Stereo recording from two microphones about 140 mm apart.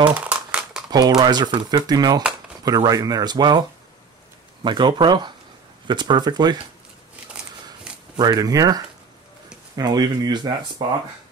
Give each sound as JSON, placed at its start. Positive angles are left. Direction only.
{"t": 0.1, "sound": "crumpling", "side_deg": -10}
{"t": 0.9, "sound": "speech", "side_deg": -30}
{"t": 4.6, "sound": "speech", "side_deg": -35}
{"t": 7.9, "sound": "a sound", "side_deg": -5}
{"t": 8.2, "sound": "speech", "side_deg": -25}